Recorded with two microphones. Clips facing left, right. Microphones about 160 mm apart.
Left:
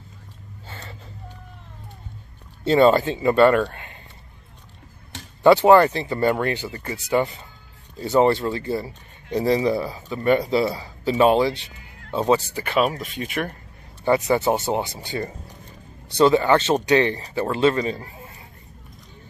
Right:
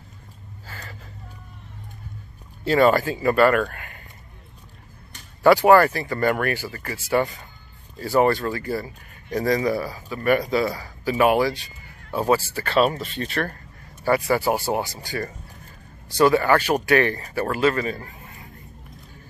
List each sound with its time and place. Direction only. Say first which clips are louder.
0.7 s gasp: left 1 dB; 25° left (ahead or behind)
2.6 s speech: left 2 dB; 25° left (ahead or behind)
5.4 s speech: left 1 dB; 20° left (ahead or behind)